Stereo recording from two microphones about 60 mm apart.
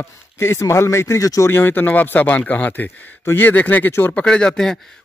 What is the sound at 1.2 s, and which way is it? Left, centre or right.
Speech, left.